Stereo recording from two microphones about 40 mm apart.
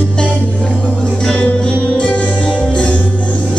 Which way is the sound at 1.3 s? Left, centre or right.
Left.